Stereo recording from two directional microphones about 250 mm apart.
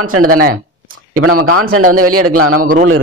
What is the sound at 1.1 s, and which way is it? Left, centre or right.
A man's voice, right.